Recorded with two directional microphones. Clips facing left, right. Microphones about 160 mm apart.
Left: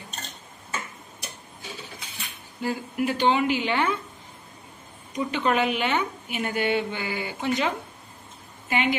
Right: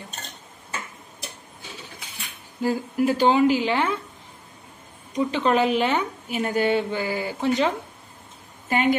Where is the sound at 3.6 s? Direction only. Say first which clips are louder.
Right 2 dB; centre (ahead or behind).